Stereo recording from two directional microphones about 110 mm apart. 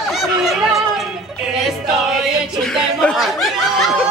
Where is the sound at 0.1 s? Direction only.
Centre (ahead or behind).